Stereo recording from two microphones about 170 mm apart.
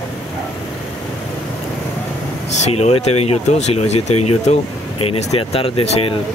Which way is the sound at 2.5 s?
40° left (ahead or behind).